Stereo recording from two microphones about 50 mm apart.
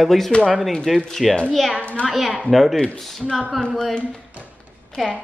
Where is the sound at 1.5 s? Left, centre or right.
Centre.